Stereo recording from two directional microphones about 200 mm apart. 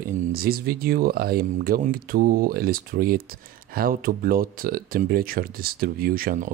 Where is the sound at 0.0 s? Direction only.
50° right (ahead or behind).